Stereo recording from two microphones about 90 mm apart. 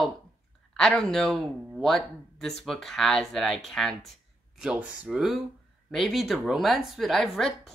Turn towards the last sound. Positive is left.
turn(degrees=5)  # may be behind; listen again after turning